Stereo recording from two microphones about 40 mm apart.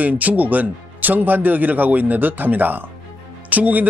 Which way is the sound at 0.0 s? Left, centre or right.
Right.